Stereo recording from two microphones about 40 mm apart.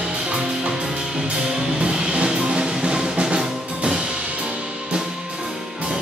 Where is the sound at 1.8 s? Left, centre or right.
Right.